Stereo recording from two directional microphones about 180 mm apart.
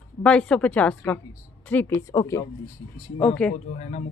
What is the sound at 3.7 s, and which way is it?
Speech, 40° left (ahead or behind).